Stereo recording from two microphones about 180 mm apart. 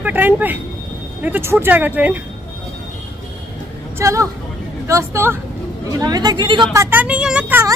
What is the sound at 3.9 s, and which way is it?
A woman's voice, 15° right (ahead or behind).